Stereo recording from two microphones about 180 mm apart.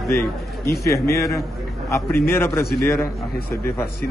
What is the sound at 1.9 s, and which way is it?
A man's voice, 15° left (ahead or behind).